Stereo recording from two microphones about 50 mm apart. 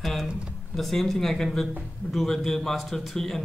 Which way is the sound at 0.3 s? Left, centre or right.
Right.